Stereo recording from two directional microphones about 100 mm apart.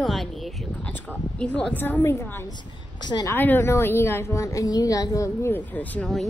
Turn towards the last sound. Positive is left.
turn(degrees=15)  # may be behind; listen again after turning